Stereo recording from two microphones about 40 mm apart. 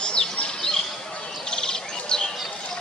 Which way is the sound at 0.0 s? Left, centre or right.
Centre.